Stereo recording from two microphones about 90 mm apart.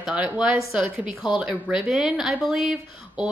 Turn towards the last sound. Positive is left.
turn(degrees=-5)  # may be behind; listen again after turning